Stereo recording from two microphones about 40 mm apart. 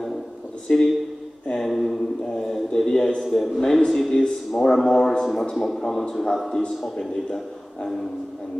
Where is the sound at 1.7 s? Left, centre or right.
Centre.